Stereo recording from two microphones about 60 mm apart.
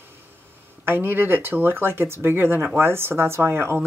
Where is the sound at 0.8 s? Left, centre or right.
Right.